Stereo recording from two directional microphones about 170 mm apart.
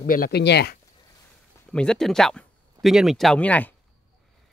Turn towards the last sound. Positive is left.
turn(degrees=10)  # may be behind; listen again after turning